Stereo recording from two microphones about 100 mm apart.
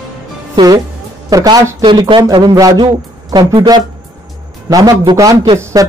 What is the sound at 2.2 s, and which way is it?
Speech, 40° right (ahead or behind).